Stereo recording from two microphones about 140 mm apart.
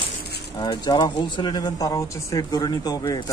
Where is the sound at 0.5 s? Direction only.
30° left (ahead or behind).